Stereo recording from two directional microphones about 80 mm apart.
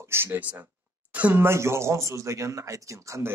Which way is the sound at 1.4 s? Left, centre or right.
Right.